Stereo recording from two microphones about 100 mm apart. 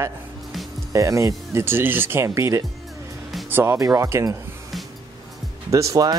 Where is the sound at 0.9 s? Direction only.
30° right (ahead or behind).